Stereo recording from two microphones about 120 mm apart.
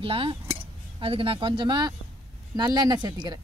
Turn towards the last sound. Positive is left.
turn(degrees=-35)  # may be behind; listen again after turning